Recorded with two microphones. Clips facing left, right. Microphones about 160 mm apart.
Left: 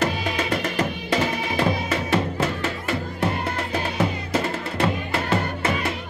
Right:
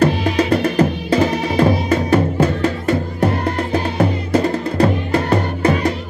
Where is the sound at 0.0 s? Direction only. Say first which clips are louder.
Right 9 dB; 35° right (ahead or behind).